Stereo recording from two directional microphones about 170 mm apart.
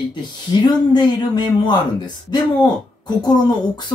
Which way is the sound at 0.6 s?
25° left (ahead or behind).